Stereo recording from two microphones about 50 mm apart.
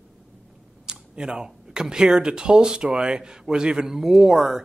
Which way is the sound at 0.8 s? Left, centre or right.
Centre.